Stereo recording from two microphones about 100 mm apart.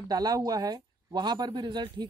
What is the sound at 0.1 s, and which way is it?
Speech, 40° right (ahead or behind).